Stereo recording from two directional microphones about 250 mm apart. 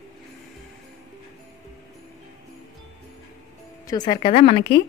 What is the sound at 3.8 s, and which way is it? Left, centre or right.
Speech, centre.